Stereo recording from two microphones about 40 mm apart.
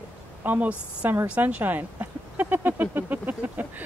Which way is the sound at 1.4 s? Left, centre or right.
Right.